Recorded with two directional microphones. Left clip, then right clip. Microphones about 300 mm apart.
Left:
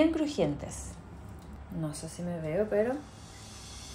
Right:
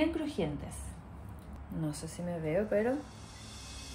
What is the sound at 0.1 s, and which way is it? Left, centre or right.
Speech, left.